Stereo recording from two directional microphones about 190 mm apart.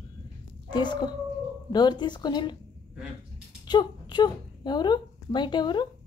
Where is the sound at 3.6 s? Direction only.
20° left (ahead or behind).